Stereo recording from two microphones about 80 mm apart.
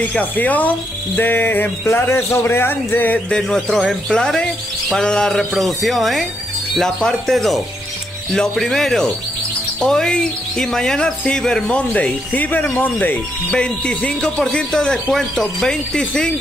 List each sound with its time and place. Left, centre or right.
0.0 s speech: centre
3.3 s speech: centre